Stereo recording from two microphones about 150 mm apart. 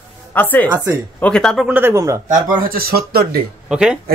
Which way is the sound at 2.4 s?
75° right (ahead or behind).